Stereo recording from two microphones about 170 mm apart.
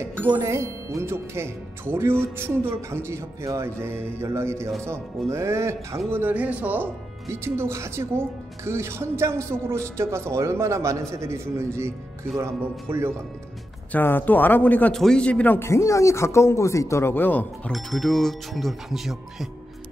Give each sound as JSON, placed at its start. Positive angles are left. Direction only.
{"t": 0.3, "sound": "speech", "side_deg": -15}
{"t": 13.9, "sound": "a man's voice", "side_deg": 10}